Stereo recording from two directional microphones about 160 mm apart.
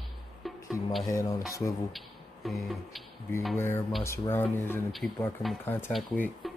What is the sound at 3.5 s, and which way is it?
Speech, 15° left (ahead or behind).